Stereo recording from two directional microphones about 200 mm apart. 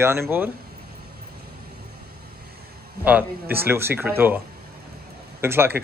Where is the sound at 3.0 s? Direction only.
10° right (ahead or behind).